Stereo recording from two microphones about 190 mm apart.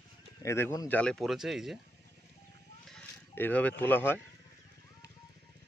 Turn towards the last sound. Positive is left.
turn(degrees=10)  # may be behind; listen again after turning